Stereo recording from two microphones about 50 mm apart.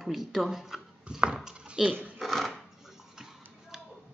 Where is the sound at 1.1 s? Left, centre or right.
Right.